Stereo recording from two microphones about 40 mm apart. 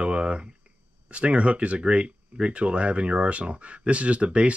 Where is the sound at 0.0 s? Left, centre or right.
Right.